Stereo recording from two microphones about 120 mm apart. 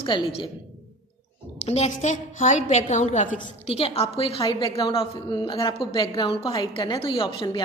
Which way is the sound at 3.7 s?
55° left (ahead or behind).